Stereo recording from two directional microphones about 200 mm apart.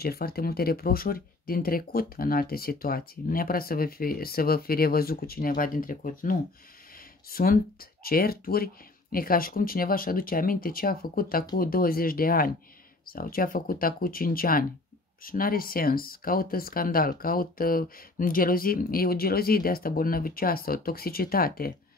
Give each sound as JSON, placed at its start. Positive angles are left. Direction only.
{"t": 0.0, "sound": "speech", "side_deg": 50}